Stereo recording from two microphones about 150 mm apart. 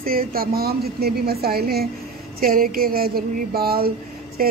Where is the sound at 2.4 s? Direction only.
75° right (ahead or behind).